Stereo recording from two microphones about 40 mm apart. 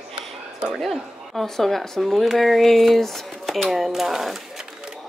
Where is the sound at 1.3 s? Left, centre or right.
Centre.